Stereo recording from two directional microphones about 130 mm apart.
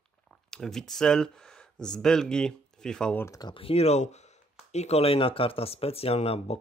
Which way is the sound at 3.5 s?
50° left (ahead or behind).